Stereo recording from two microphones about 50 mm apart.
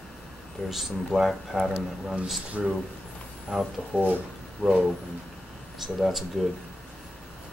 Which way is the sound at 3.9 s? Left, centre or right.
Right.